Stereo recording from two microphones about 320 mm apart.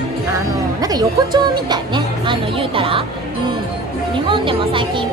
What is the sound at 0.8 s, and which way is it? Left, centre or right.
Speech, centre.